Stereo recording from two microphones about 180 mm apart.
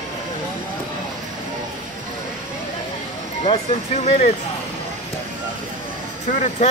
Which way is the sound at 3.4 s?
35° left (ahead or behind).